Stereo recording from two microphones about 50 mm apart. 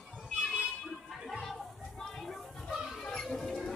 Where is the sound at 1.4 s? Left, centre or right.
Centre.